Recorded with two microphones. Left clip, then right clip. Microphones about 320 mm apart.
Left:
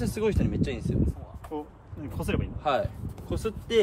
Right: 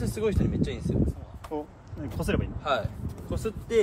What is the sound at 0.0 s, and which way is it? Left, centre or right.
Speech, left.